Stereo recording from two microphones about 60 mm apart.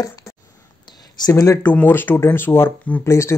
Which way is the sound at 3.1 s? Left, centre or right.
Left.